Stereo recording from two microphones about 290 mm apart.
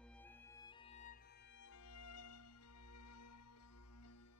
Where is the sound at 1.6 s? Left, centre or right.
Left.